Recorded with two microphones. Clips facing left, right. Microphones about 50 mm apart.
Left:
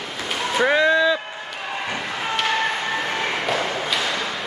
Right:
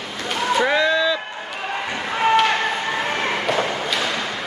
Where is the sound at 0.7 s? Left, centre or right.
Left.